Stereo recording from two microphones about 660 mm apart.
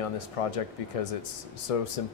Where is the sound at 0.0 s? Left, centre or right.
Left.